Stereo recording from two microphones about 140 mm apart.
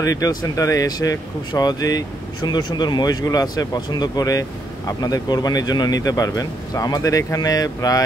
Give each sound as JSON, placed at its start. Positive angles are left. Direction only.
{"t": 0.0, "sound": "speech", "side_deg": 25}